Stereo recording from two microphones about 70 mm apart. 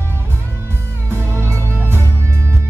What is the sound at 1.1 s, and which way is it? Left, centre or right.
Music, right.